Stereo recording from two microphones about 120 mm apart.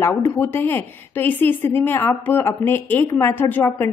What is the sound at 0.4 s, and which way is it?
A woman's voice, 20° left (ahead or behind).